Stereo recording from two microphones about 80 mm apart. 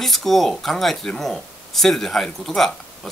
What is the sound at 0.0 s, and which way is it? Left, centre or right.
Speech, centre.